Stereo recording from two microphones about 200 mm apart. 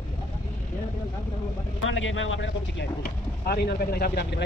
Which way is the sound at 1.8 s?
75° left (ahead or behind).